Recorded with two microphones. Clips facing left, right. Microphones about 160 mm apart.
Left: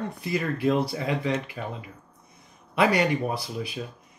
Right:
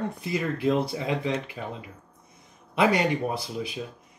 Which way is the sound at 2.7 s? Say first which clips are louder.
Even; 25° right (ahead or behind).